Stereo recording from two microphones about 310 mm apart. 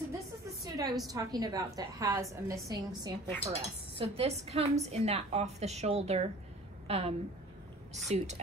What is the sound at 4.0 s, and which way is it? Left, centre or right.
A woman's voice, centre.